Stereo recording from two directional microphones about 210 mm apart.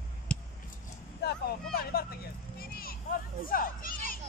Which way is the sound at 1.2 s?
50° left (ahead or behind).